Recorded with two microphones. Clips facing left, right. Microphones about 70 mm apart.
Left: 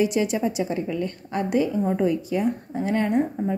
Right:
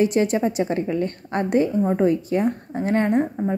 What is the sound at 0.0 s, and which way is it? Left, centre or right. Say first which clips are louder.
Speech: right 3 dB; right.